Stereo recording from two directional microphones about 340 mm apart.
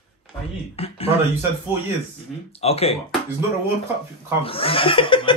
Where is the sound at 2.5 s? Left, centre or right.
Centre.